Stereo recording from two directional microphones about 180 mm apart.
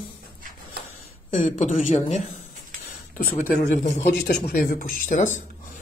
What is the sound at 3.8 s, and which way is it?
Speech, 40° left (ahead or behind).